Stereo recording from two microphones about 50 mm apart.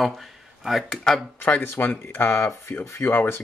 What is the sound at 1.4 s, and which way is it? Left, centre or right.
Speech, left.